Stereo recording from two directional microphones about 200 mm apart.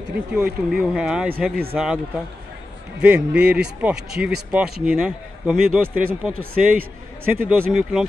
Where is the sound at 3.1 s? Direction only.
5° right (ahead or behind).